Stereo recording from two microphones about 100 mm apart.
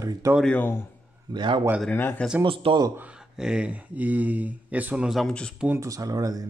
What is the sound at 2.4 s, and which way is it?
Speech, 60° right (ahead or behind).